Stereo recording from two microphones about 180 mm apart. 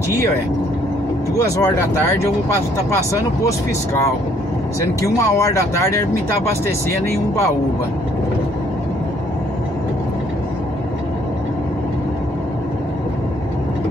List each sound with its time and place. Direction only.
1.6 s speech: 15° left (ahead or behind)
5.0 s speech: 15° left (ahead or behind)